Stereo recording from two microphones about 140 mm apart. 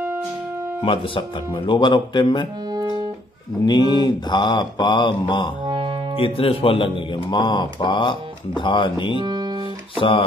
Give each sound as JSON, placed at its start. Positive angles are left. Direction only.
{"t": 0.8, "sound": "speech", "side_deg": 40}
{"t": 2.7, "sound": "music", "side_deg": -30}
{"t": 3.6, "sound": "speech", "side_deg": 30}
{"t": 5.7, "sound": "music", "side_deg": -35}
{"t": 6.1, "sound": "speech", "side_deg": 40}
{"t": 9.2, "sound": "guitar", "side_deg": -30}
{"t": 9.9, "sound": "speech", "side_deg": 40}